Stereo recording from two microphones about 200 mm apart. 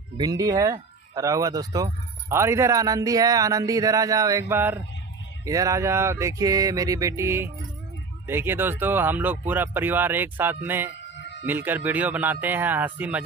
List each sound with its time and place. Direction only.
0.2 s speech: 20° right (ahead or behind)